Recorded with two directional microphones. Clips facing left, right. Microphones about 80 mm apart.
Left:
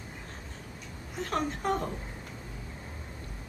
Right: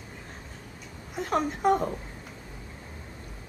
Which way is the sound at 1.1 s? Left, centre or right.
Centre.